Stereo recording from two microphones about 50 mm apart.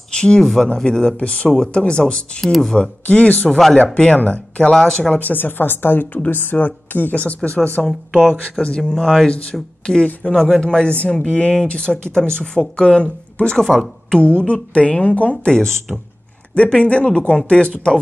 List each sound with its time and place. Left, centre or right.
0.1 s speech: centre
2.4 s a woman's voice: centre
2.7 s speech: left
3.4 s a woman's voice: centre
3.7 s speech: left
4.7 s a man's voice: centre
5.2 s speech: left
8.1 s speech: centre
8.5 s a man's voice: left
13.6 s a woman's voice: centre
14.1 s speech: centre
15.5 s a man's voice: centre
16.5 s speech: left